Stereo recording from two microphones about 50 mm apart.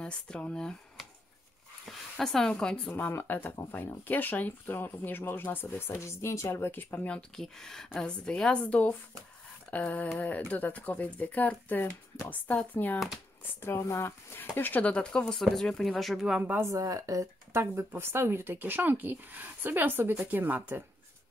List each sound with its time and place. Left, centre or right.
0.0 s speech: left
1.9 s a woman's voice: centre
2.9 s speech: left
5.8 s a woman's voice: left
6.6 s speech: left
7.1 s a woman's voice: centre
9.7 s a sound: left
10.1 s speech: left
13.4 s a woman's voice: left; by 16.3 s centre
16.5 s speech: right
17.6 s speech: right